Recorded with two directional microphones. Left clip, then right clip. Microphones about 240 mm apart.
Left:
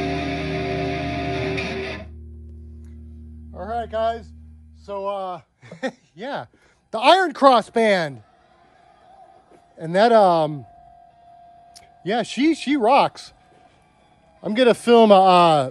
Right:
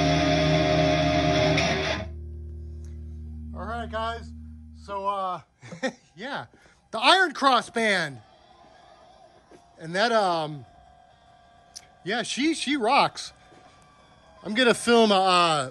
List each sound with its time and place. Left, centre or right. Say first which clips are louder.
0.0 s music: right 3 dB; centre
3.5 s a sound: left 6 dB; centre
4.8 s speech: left 1 dB; centre
9.8 s speech: left 8 dB; centre
11.7 s speech: left 6 dB; centre
14.4 s speech: left 5 dB; centre